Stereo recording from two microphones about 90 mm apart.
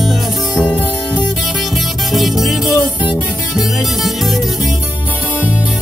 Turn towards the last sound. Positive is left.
turn(degrees=0)  # may be behind; listen again after turning